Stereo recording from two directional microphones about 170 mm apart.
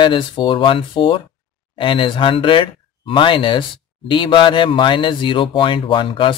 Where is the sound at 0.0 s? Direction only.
30° left (ahead or behind).